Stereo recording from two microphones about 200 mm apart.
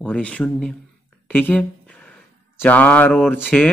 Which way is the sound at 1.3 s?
5° left (ahead or behind).